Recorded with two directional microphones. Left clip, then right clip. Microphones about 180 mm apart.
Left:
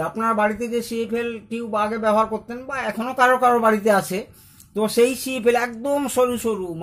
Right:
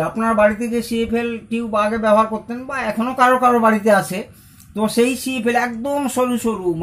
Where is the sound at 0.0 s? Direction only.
45° left (ahead or behind).